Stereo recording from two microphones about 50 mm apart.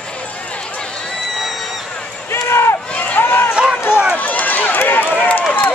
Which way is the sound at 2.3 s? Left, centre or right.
Left.